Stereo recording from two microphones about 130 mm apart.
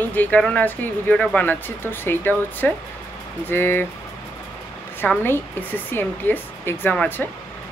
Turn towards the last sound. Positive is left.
turn(degrees=10)  # may be behind; listen again after turning